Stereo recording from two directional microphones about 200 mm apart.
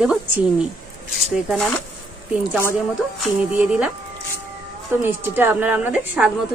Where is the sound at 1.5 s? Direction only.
Centre (ahead or behind).